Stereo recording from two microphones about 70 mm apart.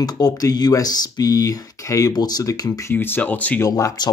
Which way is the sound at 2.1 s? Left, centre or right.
Left.